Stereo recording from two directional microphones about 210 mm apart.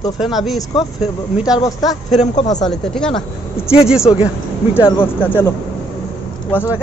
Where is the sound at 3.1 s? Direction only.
30° left (ahead or behind).